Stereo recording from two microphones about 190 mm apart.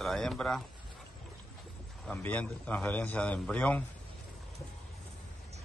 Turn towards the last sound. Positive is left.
turn(degrees=5)  # may be behind; listen again after turning